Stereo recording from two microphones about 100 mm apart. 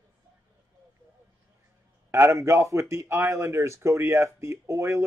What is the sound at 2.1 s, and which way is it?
A man's voice, 25° right (ahead or behind).